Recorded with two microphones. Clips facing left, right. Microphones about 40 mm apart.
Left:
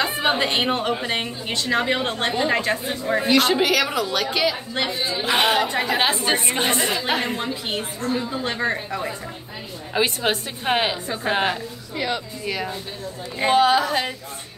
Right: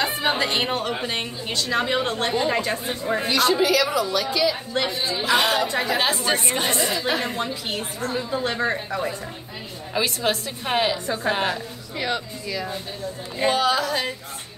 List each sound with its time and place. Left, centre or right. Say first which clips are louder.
0.1 s a woman's voice: left 2 dB; left
3.3 s speech: left 1 dB; left
4.5 s a woman's voice: even; centre
5.2 s a woman's voice: left 1 dB; left
6.1 s speech: left 1 dB; left
7.3 s speech: left 1 dB; centre
9.9 s a woman's voice: left 2 dB; left
13.5 s a woman's voice: left 4 dB; left